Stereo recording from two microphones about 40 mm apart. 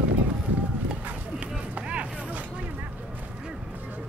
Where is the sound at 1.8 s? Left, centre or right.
Right.